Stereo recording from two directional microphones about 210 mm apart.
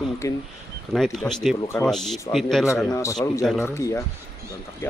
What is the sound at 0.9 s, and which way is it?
Speech, centre (ahead or behind).